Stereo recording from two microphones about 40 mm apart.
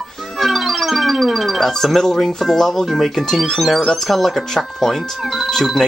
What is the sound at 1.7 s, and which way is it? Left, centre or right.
Speech, centre.